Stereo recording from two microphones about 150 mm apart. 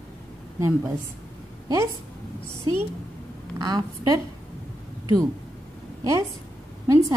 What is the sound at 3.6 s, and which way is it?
Speech, 25° right (ahead or behind).